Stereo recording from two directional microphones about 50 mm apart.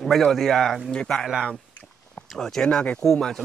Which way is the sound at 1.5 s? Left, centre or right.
Left.